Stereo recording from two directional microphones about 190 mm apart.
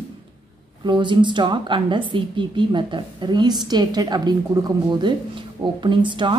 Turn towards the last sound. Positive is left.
turn(degrees=-25)  # may be behind; listen again after turning